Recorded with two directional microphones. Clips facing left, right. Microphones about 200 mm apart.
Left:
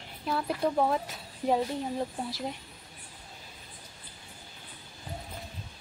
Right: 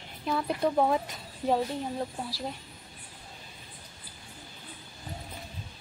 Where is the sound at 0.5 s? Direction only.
10° right (ahead or behind).